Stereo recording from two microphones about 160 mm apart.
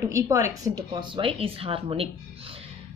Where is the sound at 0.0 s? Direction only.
20° right (ahead or behind); by 2.0 s 35° right (ahead or behind).